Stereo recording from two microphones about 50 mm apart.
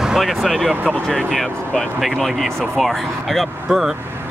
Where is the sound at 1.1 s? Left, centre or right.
Centre.